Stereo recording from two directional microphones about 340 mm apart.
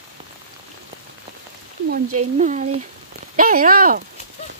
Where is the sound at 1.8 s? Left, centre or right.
Right.